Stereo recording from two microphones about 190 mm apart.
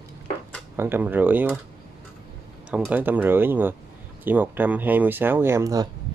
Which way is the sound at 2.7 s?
5° right (ahead or behind).